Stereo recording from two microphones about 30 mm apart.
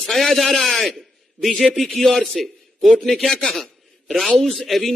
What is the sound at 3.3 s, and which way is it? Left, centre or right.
Speech, left.